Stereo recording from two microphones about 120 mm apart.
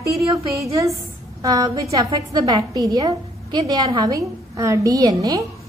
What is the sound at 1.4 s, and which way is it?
A woman's voice, 30° right (ahead or behind).